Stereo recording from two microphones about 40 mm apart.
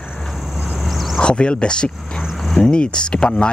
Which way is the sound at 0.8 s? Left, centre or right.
Centre.